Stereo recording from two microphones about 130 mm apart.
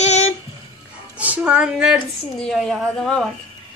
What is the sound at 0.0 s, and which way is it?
Music, 60° left (ahead or behind).